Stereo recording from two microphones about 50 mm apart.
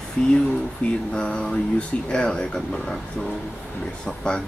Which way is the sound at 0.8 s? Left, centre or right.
Left.